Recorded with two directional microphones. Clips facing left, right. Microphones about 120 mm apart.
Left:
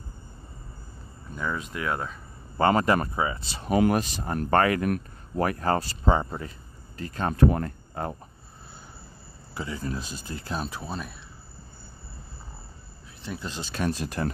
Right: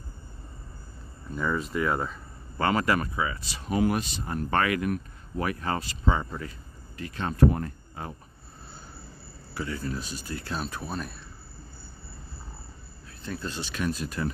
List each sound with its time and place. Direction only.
1.3 s speech: centre (ahead or behind)
2.5 s speech: 30° left (ahead or behind)
3.6 s speech: 55° left (ahead or behind); by 7.3 s 40° left (ahead or behind)
7.3 s speech: 60° left (ahead or behind)
9.5 s speech: 20° left (ahead or behind)
10.9 s speech: centre (ahead or behind)
13.3 s speech: 15° left (ahead or behind)
13.7 s speech: 55° left (ahead or behind)